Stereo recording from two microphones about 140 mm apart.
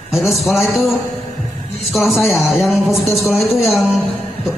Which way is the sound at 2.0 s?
Centre (ahead or behind).